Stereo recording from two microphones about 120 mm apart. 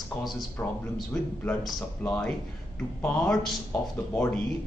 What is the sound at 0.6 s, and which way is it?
Speech, 20° left (ahead or behind).